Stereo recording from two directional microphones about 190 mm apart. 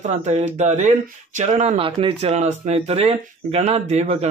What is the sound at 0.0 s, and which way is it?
Speech, 35° right (ahead or behind).